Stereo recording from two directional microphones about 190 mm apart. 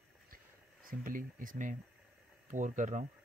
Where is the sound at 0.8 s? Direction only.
45° right (ahead or behind).